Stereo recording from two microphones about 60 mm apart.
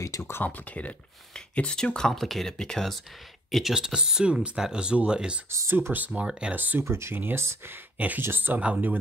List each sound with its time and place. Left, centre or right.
0.0 s speech: left
0.3 s speech: left; by 3.0 s centre
3.5 s speech: centre
5.7 s speech: right
5.9 s speech: right
6.8 s speech: right
8.5 s speech: right